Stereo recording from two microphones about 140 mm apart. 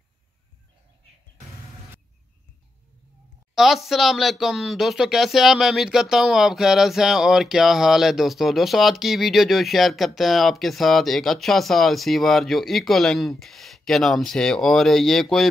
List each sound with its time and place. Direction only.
3.5 s speech: centre (ahead or behind)